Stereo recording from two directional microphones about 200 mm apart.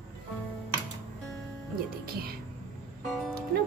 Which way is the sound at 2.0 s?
50° right (ahead or behind).